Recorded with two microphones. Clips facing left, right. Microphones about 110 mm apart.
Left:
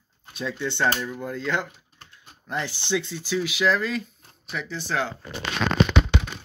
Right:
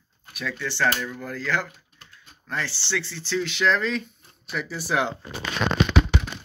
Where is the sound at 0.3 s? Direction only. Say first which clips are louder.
Left 2 dB; 25° left (ahead or behind); by 5.1 s 10° right (ahead or behind).